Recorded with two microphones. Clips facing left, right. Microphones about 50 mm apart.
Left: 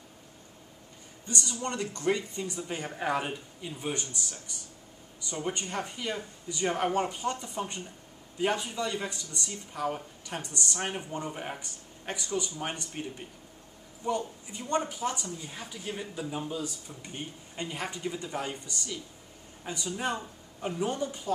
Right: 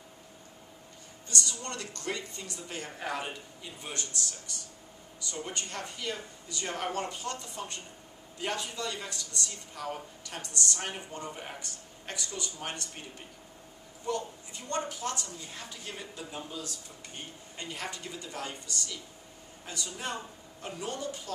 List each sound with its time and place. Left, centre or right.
1.2 s speech: centre
14.0 s speech: centre